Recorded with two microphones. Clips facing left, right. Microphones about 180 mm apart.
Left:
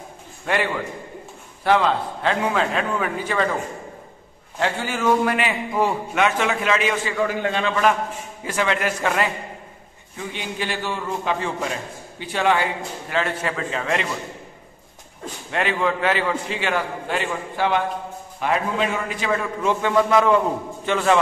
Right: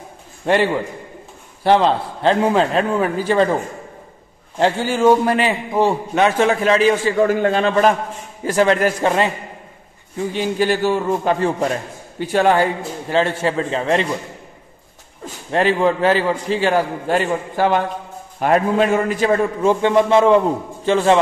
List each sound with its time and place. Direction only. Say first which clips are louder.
0.5 s a man's voice: right 7 dB; 30° right (ahead or behind)
4.6 s a man's voice: right 7 dB; 30° right (ahead or behind)
13.1 s a man's voice: right 7 dB; 30° right (ahead or behind)
15.5 s a man's voice: right 6 dB; 35° right (ahead or behind)